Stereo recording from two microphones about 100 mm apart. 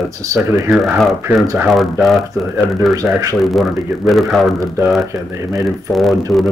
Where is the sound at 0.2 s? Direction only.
35° right (ahead or behind).